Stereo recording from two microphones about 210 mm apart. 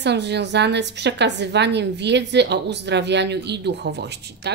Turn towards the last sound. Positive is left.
turn(degrees=-50)  # may be behind; listen again after turning